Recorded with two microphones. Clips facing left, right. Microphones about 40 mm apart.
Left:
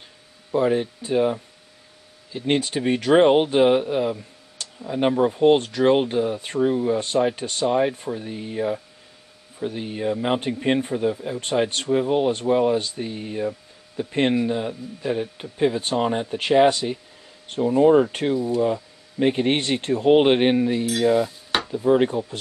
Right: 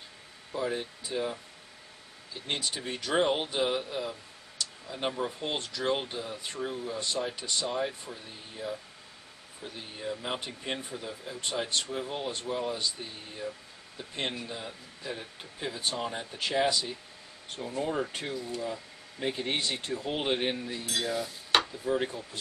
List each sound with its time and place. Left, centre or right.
0.5 s speech: left
2.3 s speech: left
5.9 s speech: left
18.3 s speech: left
18.6 s speech: left